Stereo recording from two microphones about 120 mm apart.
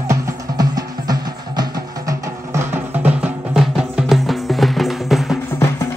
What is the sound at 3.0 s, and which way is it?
Music, 15° right (ahead or behind).